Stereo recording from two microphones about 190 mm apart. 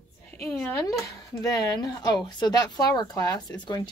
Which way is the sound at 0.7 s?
15° left (ahead or behind).